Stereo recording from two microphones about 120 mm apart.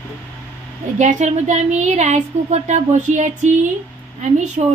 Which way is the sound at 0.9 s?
75° right (ahead or behind).